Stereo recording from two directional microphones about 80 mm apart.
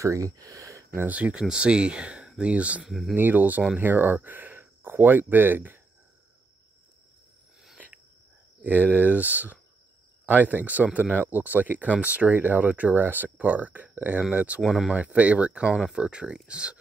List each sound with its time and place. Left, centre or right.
0.0 s speech: right
0.9 s speech: centre
2.9 s speech: centre
3.2 s speech: right
7.7 s a sound: centre
8.6 s speech: right
14.6 s speech: centre
15.0 s speech: centre